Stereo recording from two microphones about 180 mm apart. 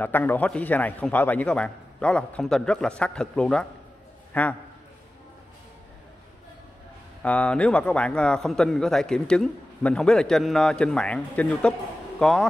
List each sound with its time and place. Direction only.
0.0 s a man's voice: 10° left (ahead or behind)
7.2 s a man's voice: 5° left (ahead or behind)